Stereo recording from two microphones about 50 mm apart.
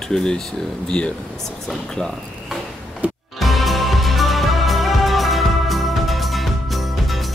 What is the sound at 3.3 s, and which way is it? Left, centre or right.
Music, centre.